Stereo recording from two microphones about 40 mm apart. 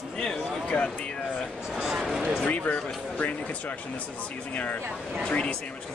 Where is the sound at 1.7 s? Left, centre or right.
Centre.